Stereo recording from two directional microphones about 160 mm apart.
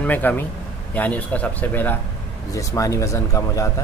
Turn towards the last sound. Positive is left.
turn(degrees=20)  # may be behind; listen again after turning